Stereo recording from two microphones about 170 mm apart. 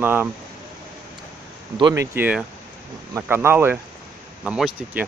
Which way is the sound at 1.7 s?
20° right (ahead or behind).